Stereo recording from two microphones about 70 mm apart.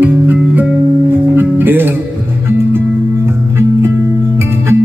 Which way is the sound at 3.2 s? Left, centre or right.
Right.